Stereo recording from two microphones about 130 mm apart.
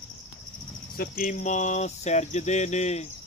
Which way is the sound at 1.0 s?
90° left.